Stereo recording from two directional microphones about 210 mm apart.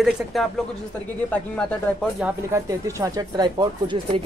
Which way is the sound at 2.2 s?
15° right (ahead or behind).